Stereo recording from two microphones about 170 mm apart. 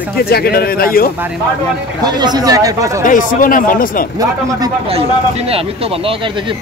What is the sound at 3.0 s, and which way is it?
Speech, 50° left (ahead or behind).